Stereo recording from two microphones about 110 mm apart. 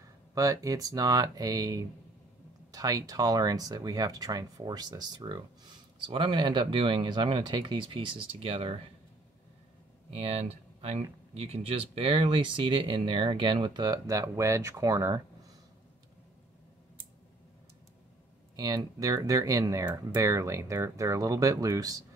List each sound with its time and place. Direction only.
0.3 s speech: 30° right (ahead or behind); by 8.8 s 60° right (ahead or behind)
10.1 s speech: 65° right (ahead or behind); by 13.9 s 45° right (ahead or behind)
13.9 s speech: 30° right (ahead or behind)
18.6 s speech: 35° right (ahead or behind)